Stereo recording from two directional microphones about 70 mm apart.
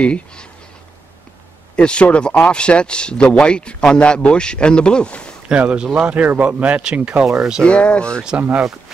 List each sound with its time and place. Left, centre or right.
0.0 s speech: centre
1.8 s speech: centre
5.5 s speech: centre
7.6 s speech: centre
8.4 s speech: right